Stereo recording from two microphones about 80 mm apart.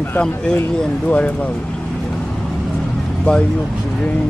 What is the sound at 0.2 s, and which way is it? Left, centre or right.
Speech, centre.